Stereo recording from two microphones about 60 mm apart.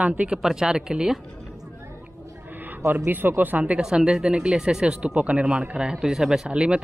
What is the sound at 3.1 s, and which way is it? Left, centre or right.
Speech, right.